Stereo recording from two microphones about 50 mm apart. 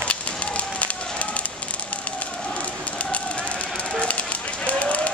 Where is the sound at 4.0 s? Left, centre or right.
Left.